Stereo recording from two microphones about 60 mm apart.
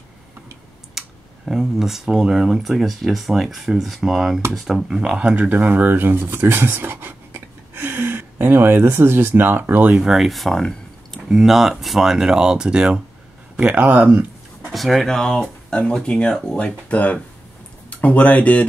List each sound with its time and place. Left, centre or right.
0.9 s speech: centre
5.3 s speech: right
9.9 s speech: centre
11.2 s speech: centre; by 14.2 s right
14.7 s speech: centre
15.0 s speech: centre